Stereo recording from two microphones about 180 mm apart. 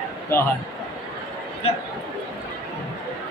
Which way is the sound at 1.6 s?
35° left (ahead or behind).